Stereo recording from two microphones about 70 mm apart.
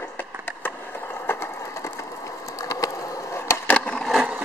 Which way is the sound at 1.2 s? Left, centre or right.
Left.